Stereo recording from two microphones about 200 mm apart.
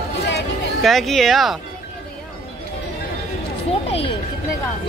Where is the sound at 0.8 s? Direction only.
Centre (ahead or behind).